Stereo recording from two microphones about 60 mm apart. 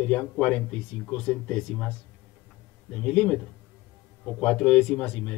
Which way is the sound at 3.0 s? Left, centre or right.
Centre.